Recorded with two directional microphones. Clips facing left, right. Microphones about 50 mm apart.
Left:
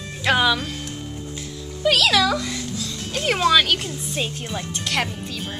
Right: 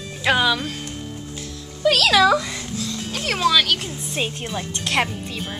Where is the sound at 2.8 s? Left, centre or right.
Centre.